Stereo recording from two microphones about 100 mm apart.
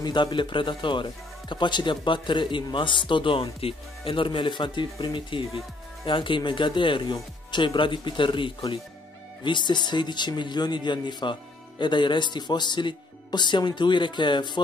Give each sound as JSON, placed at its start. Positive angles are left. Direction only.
{"t": 0.0, "sound": "speech", "side_deg": 50}